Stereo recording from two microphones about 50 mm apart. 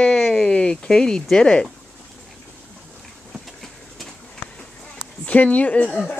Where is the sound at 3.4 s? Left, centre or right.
Centre.